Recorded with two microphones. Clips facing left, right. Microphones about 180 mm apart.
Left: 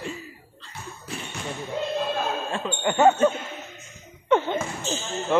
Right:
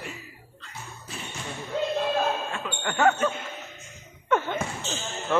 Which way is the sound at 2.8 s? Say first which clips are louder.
Left 5 dB; 20° left (ahead or behind).